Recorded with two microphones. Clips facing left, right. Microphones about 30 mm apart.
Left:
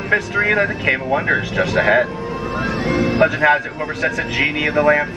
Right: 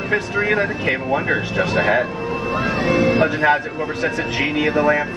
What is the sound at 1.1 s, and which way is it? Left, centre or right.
Speech, centre.